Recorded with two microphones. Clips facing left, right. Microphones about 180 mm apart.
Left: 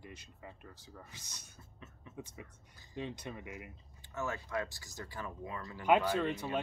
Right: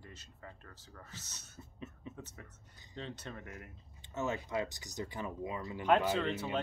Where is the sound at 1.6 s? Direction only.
20° right (ahead or behind).